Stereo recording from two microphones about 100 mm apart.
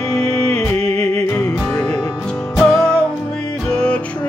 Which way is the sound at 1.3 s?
15° left (ahead or behind).